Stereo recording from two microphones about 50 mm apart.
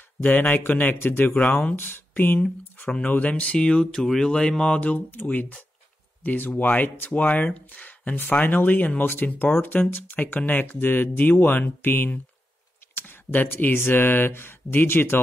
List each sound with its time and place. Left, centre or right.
0.2 s speech: left
1.8 s speech: left
2.9 s speech: left
4.9 s speech: left